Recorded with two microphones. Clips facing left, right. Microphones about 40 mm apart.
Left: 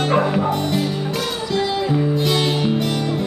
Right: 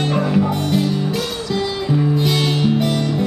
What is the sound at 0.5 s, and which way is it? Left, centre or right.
Music, centre.